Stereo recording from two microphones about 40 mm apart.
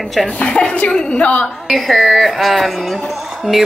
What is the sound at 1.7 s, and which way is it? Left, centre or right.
A woman's voice, centre.